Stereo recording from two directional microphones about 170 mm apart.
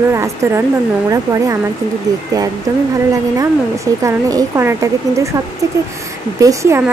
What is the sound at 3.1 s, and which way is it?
Speech, 20° right (ahead or behind).